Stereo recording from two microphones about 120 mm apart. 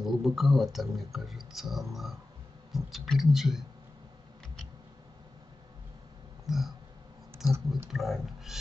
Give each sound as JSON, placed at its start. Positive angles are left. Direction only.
{"t": 0.0, "sound": "speech", "side_deg": 0}
{"t": 6.4, "sound": "a sound", "side_deg": 0}
{"t": 7.4, "sound": "speech", "side_deg": -25}
{"t": 7.9, "sound": "speech", "side_deg": 0}